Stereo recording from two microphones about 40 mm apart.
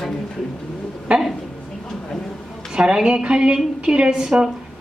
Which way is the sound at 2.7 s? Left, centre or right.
Centre.